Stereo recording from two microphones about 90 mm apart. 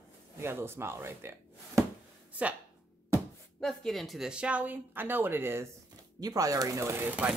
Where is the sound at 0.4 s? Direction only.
25° right (ahead or behind).